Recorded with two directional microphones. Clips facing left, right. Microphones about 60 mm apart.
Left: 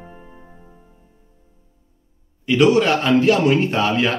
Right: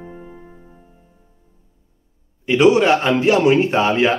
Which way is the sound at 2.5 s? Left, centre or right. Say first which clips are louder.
Right 2 dB; right.